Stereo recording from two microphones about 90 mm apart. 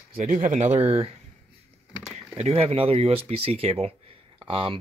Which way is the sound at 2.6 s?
90° right.